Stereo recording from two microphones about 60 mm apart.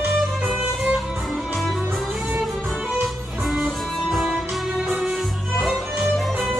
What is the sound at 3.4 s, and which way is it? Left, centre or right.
Music, centre.